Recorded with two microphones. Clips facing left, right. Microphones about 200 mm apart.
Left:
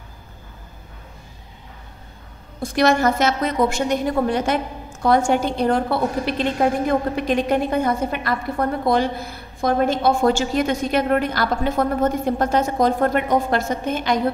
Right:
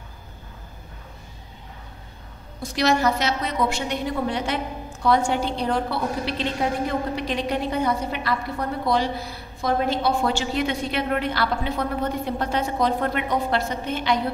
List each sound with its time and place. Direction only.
2.6 s a woman's voice: 50° left (ahead or behind)